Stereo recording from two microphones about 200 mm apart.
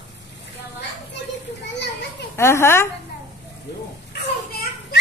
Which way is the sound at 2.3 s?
15° left (ahead or behind).